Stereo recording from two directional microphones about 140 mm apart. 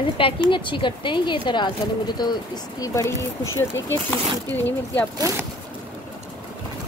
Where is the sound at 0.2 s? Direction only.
35° left (ahead or behind); by 3.3 s 20° left (ahead or behind).